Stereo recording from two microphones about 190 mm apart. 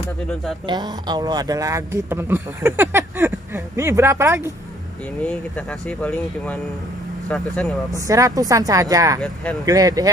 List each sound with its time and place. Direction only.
0.7 s a man's voice: 20° right (ahead or behind)
5.2 s speech: 5° left (ahead or behind)
7.9 s a man's voice: 15° right (ahead or behind)
9.2 s speech: 5° left (ahead or behind)
9.7 s speech: 20° right (ahead or behind)